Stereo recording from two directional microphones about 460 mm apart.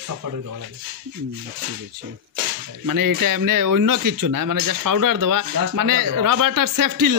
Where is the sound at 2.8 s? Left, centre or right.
Right.